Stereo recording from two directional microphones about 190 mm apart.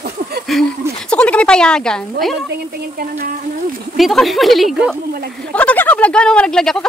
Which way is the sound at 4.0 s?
Centre (ahead or behind).